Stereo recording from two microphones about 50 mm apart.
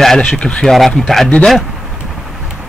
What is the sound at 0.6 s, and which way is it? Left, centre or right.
Speech, centre.